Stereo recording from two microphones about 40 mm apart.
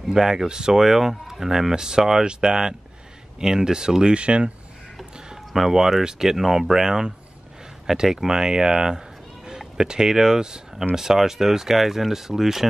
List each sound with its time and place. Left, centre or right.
0.1 s speech: centre
5.3 s speech: centre